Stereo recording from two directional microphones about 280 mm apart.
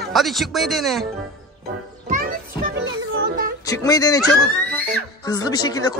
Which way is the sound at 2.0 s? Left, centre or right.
Right.